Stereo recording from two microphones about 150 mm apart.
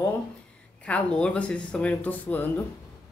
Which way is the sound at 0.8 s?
5° left (ahead or behind).